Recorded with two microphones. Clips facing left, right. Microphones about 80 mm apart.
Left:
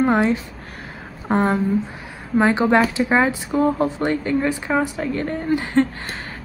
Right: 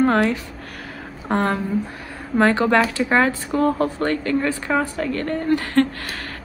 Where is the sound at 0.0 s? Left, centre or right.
Centre.